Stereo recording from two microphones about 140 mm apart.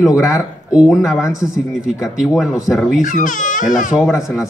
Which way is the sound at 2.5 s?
20° left (ahead or behind).